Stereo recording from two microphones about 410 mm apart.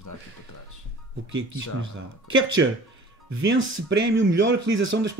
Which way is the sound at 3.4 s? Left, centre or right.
Right.